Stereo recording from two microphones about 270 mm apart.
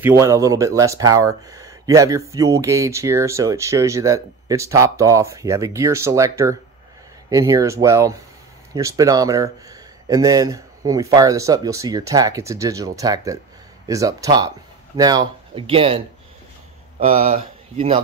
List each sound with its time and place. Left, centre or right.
0.0 s speech: centre
17.0 s speech: right